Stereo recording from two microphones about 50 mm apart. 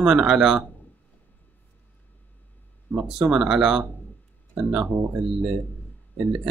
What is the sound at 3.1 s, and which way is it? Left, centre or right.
Speech, centre.